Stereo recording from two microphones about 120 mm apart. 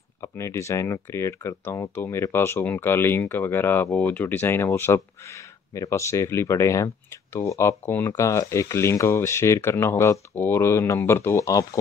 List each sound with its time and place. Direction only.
0.2 s speech: 25° left (ahead or behind)